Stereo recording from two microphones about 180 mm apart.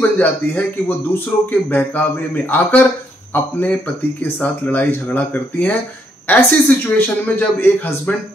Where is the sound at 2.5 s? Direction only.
10° left (ahead or behind).